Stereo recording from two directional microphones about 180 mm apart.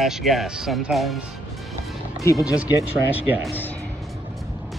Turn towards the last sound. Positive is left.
turn(degrees=-10)  # may be behind; listen again after turning